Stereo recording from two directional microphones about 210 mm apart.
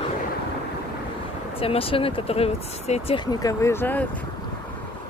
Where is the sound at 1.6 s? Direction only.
25° left (ahead or behind); by 4.1 s 10° left (ahead or behind).